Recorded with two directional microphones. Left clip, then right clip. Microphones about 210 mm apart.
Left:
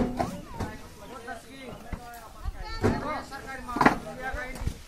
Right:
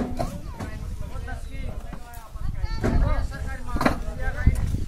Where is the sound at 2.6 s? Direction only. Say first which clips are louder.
Even; 45° right (ahead or behind).